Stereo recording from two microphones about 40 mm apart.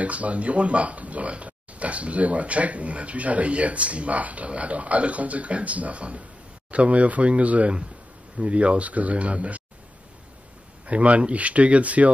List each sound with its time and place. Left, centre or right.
0.0 s speech: right
10.9 s speech: right